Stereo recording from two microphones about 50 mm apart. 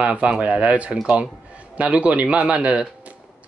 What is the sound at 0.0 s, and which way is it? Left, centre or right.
Speech, right.